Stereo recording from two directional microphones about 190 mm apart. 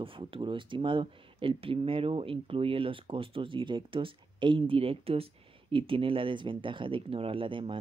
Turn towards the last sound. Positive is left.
turn(degrees=-25)  # may be behind; listen again after turning